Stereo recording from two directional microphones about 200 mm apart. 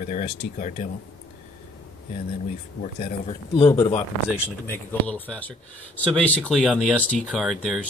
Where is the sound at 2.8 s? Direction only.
40° left (ahead or behind).